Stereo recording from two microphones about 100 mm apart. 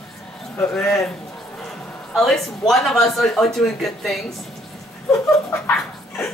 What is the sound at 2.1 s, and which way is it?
Speech, centre (ahead or behind).